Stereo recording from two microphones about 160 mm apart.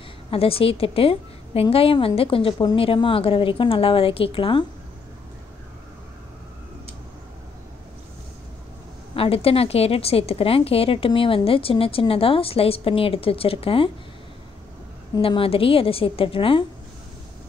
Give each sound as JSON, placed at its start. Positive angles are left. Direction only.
{"t": 0.3, "sound": "a woman's voice", "side_deg": 35}
{"t": 9.1, "sound": "a woman's voice", "side_deg": 35}
{"t": 15.1, "sound": "a woman's voice", "side_deg": 35}